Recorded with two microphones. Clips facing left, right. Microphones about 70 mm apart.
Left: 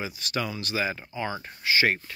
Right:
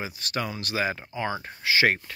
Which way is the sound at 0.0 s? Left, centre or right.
Right.